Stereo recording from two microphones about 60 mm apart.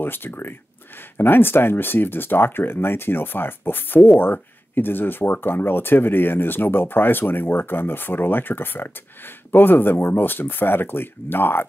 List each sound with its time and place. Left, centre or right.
0.0 s speech: left